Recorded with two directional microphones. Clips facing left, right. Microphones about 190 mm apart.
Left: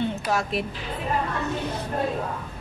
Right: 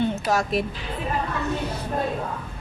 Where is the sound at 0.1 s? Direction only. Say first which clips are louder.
Right 3 dB; 40° right (ahead or behind).